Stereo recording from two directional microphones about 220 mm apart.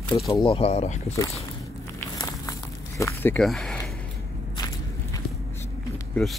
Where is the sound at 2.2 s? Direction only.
15° left (ahead or behind).